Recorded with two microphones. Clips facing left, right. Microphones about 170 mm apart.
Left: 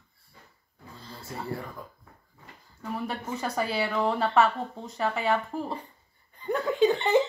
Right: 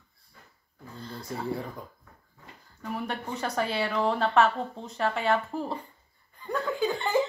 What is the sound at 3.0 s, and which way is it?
Speech, centre (ahead or behind).